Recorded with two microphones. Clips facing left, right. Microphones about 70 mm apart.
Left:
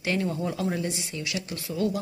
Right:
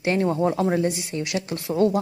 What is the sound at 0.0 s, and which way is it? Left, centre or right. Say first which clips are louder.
Speech: right 7 dB; right.